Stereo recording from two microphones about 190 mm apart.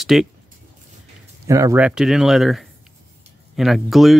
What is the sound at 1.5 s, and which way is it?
Speech, 15° right (ahead or behind).